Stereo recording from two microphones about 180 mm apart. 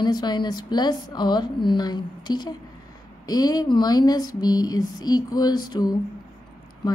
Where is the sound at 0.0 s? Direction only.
25° left (ahead or behind).